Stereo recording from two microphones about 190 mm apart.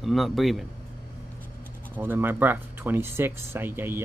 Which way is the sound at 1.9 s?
10° right (ahead or behind).